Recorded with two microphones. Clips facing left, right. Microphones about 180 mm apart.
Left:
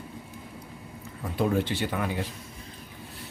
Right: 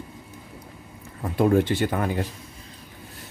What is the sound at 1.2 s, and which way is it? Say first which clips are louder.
Speech: right 6 dB; 50° right (ahead or behind).